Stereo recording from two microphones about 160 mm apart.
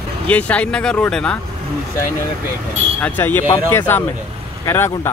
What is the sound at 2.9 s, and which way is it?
Speech, 10° left (ahead or behind).